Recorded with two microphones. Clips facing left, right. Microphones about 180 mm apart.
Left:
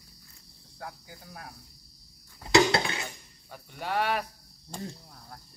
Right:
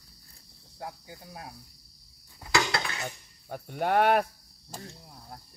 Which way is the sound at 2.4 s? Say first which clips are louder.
Left 6 dB; 25° left (ahead or behind).